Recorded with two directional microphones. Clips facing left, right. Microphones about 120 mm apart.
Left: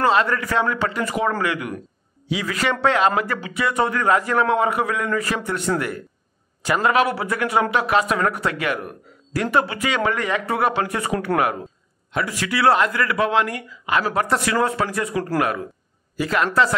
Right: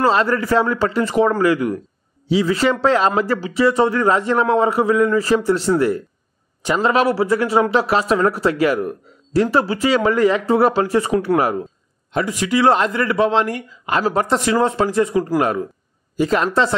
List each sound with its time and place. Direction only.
0.0 s speech: 35° right (ahead or behind)
12.3 s speech: 20° right (ahead or behind)